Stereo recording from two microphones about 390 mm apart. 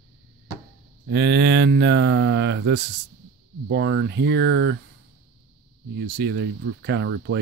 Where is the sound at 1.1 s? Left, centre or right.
Right.